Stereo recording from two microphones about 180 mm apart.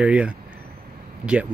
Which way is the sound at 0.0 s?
5° right (ahead or behind).